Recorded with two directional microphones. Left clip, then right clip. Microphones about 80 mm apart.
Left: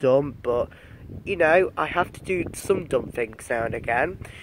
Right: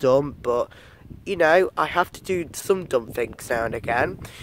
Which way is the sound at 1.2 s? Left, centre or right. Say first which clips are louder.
Right 1 dB; right.